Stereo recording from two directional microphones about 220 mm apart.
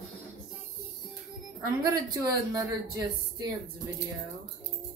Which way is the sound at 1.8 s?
15° right (ahead or behind).